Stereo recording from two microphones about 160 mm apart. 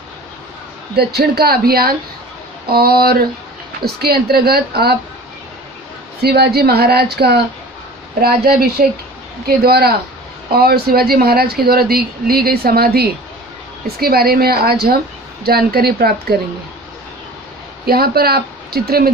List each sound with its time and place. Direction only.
0.9 s speech: 80° right
6.2 s speech: 85° right
8.2 s speech: 70° right (ahead or behind)
17.8 s speech: 75° right (ahead or behind)